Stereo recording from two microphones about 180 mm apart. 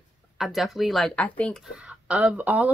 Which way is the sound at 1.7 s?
5° right (ahead or behind).